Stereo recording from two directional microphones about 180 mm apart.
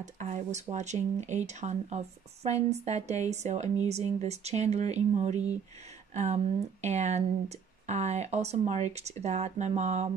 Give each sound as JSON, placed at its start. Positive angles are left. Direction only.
{"t": 0.0, "sound": "speech", "side_deg": -40}